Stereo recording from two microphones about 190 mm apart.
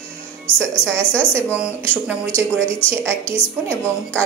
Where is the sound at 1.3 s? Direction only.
10° right (ahead or behind).